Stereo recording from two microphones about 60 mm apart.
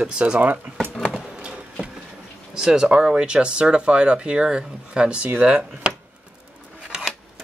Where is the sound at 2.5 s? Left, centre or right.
Centre.